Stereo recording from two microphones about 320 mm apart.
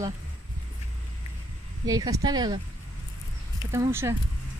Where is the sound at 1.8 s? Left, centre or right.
Centre.